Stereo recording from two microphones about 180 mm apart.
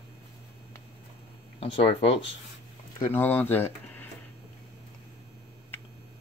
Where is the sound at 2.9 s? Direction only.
10° left (ahead or behind).